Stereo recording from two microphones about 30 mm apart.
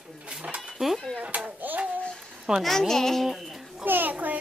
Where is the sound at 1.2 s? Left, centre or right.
Right.